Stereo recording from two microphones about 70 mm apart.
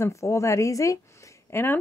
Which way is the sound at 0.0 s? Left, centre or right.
Left.